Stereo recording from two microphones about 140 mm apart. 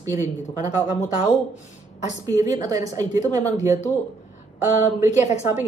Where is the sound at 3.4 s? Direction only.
55° left (ahead or behind).